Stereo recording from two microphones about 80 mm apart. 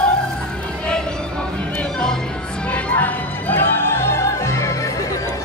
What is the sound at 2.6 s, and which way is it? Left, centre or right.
Opera, centre.